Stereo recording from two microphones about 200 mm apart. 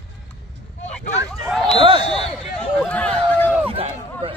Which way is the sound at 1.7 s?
25° right (ahead or behind).